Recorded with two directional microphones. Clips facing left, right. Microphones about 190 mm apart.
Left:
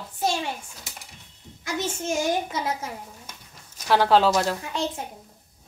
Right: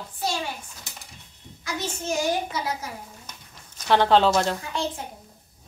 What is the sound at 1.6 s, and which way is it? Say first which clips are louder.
A child's voice: left 2 dB; 25° left (ahead or behind).